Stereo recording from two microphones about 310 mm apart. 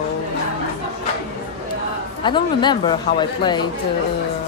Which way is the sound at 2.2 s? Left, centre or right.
Centre.